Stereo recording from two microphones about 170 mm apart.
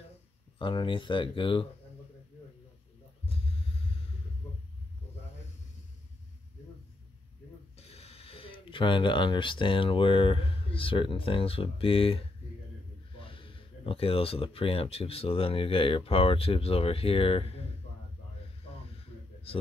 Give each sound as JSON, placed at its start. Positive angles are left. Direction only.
{"t": 0.6, "sound": "speech", "side_deg": 30}
{"t": 7.7, "sound": "speech", "side_deg": 35}
{"t": 18.9, "sound": "a sound", "side_deg": 35}